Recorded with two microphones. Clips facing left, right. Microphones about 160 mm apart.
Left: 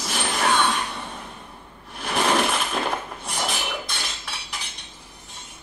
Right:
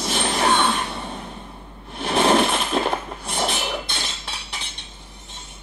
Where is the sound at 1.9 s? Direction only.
25° right (ahead or behind).